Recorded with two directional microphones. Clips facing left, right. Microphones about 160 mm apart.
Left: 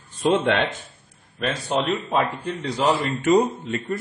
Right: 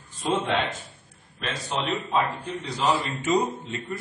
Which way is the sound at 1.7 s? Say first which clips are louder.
Left 4 dB; 60° left (ahead or behind).